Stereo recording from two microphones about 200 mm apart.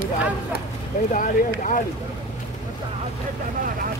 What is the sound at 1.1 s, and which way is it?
Speech, 40° left (ahead or behind).